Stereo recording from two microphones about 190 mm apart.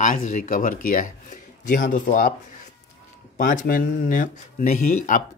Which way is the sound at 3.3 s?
45° left (ahead or behind).